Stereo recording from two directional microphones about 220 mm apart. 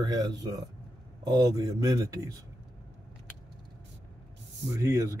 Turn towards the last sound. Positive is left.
turn(degrees=-15)  # may be behind; listen again after turning